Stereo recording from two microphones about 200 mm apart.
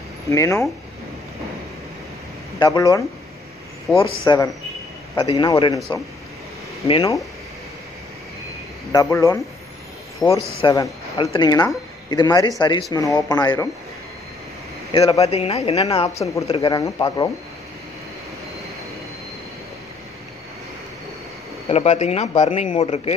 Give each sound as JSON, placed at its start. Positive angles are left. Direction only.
{"t": 0.3, "sound": "speech", "side_deg": 15}
{"t": 2.6, "sound": "speech", "side_deg": 20}
{"t": 3.9, "sound": "a man's voice", "side_deg": -5}
{"t": 4.2, "sound": "speech", "side_deg": 15}
{"t": 8.9, "sound": "speech", "side_deg": 15}
{"t": 10.2, "sound": "a man's voice", "side_deg": 0}
{"t": 10.6, "sound": "speech", "side_deg": 20}
{"t": 14.9, "sound": "speech", "side_deg": 25}
{"t": 21.6, "sound": "speech", "side_deg": 35}